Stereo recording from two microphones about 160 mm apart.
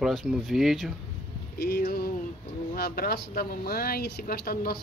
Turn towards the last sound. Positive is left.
turn(degrees=70)  # may be behind; listen again after turning